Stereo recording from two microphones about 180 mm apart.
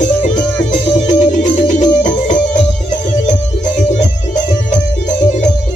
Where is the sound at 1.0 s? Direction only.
45° left (ahead or behind).